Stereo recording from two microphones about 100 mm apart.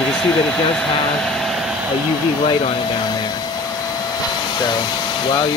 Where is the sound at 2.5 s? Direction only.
70° left (ahead or behind).